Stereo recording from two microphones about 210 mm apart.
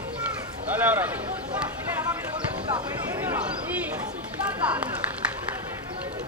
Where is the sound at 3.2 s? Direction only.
10° right (ahead or behind).